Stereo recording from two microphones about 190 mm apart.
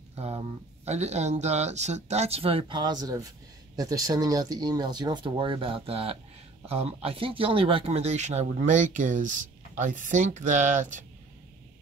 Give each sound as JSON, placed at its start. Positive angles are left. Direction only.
{"t": 0.1, "sound": "speech", "side_deg": -35}